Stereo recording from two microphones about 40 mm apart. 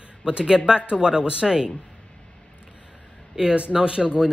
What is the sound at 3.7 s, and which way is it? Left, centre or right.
Speech, right.